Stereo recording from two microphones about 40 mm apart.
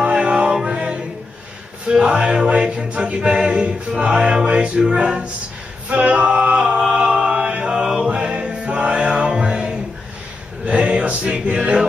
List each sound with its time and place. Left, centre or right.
0.2 s music: right
5.9 s a capella: right
6.8 s chant: centre
7.6 s music: centre